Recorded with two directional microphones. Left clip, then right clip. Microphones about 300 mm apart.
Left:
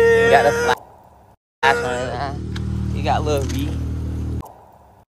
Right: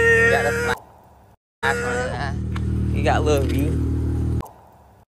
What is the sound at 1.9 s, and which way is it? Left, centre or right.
Music, left.